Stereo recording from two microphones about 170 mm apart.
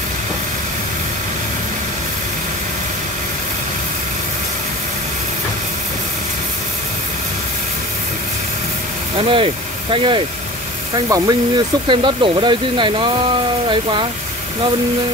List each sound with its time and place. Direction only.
9.3 s speech: 30° right (ahead or behind)